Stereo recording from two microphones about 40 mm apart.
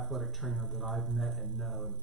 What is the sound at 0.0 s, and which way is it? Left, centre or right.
A man's voice, centre.